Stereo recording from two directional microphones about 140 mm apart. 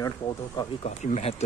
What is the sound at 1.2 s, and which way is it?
Speech, 50° left (ahead or behind).